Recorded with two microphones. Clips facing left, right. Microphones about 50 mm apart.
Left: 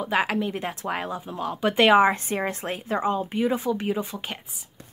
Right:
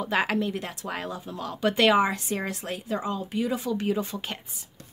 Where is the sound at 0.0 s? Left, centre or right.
Centre.